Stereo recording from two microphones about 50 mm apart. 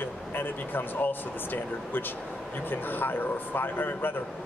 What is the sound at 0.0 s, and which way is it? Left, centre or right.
Speech, left.